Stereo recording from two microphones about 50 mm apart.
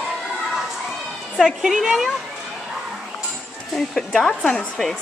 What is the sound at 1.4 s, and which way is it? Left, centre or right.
Speech, centre.